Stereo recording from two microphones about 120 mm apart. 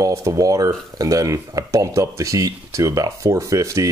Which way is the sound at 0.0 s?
30° right (ahead or behind).